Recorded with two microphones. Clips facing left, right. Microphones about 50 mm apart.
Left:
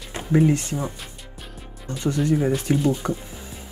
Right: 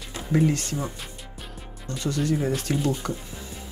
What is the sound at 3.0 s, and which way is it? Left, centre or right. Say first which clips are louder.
Speech: left 4 dB; left.